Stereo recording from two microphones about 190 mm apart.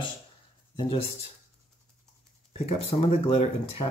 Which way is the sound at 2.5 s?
35° left (ahead or behind).